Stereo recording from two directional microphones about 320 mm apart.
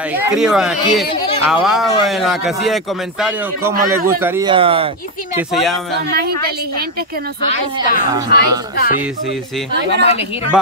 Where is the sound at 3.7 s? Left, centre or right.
Right.